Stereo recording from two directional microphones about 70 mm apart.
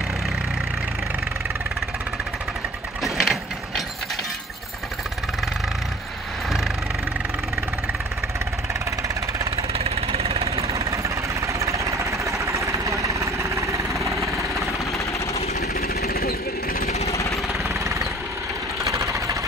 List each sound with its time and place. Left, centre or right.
3.0 s mechanisms: centre
10.7 s engine: right
17.1 s jackhammer: left
18.9 s sewing machine: right